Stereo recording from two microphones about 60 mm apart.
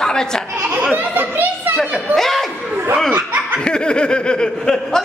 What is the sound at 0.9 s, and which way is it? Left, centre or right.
Speech, right.